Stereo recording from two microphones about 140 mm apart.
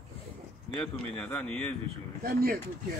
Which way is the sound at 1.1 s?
10° left (ahead or behind).